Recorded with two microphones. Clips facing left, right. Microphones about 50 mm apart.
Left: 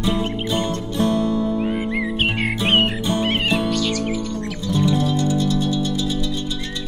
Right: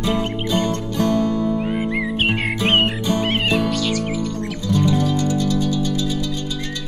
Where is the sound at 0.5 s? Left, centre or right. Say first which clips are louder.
Right 4 dB; left.